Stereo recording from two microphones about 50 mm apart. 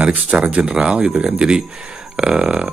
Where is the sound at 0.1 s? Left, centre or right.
Right.